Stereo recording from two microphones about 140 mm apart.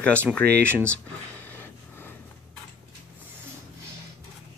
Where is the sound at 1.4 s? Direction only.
15° left (ahead or behind).